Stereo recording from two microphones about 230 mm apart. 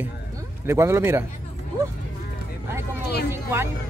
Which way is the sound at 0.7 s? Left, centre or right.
Centre.